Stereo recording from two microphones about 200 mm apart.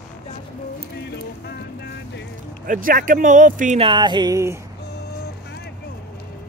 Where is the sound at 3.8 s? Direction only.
25° right (ahead or behind).